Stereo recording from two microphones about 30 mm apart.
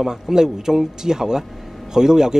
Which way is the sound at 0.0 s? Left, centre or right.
Right.